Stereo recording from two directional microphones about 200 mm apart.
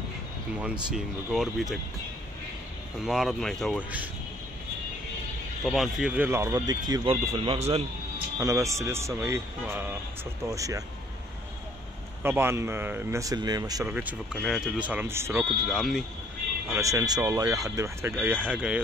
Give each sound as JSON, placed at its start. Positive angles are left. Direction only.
{"t": 0.9, "sound": "speech", "side_deg": 0}
{"t": 3.1, "sound": "speech", "side_deg": 0}
{"t": 5.7, "sound": "speech", "side_deg": 0}
{"t": 8.4, "sound": "speech", "side_deg": -15}
{"t": 12.2, "sound": "speech", "side_deg": -10}
{"t": 14.3, "sound": "speech", "side_deg": 0}
{"t": 15.7, "sound": "speech", "side_deg": 0}
{"t": 16.7, "sound": "speech", "side_deg": -15}